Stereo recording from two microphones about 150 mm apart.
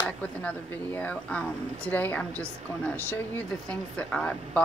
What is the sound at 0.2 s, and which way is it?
A woman's voice, 10° left (ahead or behind).